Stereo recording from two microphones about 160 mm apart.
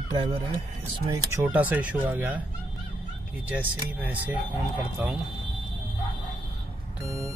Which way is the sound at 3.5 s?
10° right (ahead or behind).